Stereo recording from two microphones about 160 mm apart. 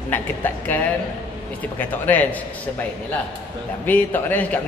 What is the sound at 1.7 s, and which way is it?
Speech, 10° left (ahead or behind).